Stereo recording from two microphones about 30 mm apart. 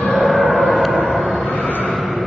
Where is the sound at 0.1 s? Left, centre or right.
Centre.